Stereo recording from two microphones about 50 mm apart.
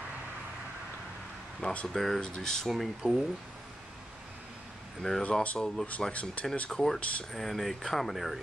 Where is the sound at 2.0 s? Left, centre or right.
Centre.